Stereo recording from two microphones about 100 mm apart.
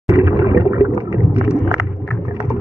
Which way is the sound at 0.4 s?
25° right (ahead or behind).